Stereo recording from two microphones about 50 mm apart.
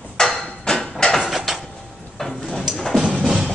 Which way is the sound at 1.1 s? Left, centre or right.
Centre.